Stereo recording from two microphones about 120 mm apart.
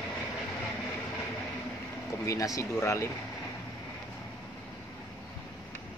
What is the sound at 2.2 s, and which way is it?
Speech, 30° left (ahead or behind).